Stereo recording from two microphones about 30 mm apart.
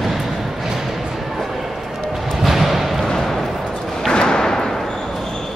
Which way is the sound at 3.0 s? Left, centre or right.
Centre.